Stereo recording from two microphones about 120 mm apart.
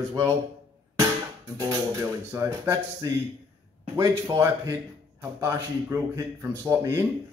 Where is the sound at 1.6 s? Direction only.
30° right (ahead or behind).